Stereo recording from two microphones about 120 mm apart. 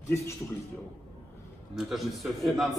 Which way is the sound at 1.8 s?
Centre (ahead or behind).